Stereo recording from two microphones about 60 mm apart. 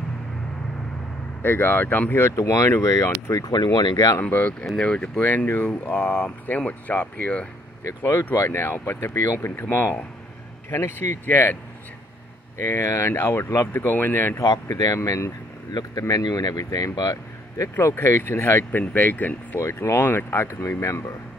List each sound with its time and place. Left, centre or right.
1.4 s speech: left
2.2 s speech: left
3.3 s speech: left
4.2 s speech: left
8.0 s speech: left
9.6 s speech: left
12.5 s speech: left
14.4 s speech: left
15.0 s speech: left
16.0 s speech: left
17.7 s speech: left
18.7 s speech: left
19.6 s speech: left